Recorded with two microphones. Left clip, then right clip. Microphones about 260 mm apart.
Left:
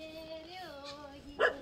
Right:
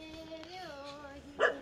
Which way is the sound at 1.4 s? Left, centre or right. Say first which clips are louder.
Even; left.